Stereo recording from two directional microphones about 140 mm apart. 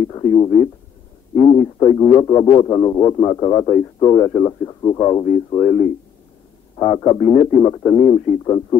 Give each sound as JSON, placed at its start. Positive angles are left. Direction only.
{"t": 0.1, "sound": "a man's voice", "side_deg": 30}